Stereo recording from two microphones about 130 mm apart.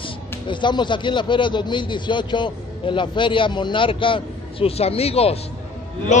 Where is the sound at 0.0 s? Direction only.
35° left (ahead or behind).